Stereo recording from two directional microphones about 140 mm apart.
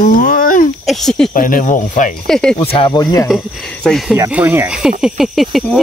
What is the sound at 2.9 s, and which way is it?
Speech, 25° left (ahead or behind).